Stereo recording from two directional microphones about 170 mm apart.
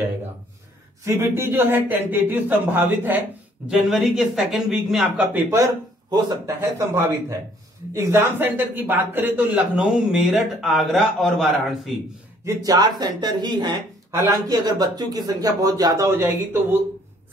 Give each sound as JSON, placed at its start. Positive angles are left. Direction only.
{"t": 1.0, "sound": "a man's voice", "side_deg": -15}
{"t": 6.0, "sound": "a man's voice", "side_deg": -25}
{"t": 12.4, "sound": "speech", "side_deg": -20}